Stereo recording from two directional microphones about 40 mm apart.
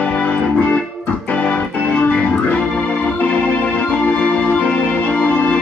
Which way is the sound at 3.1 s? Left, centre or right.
Left.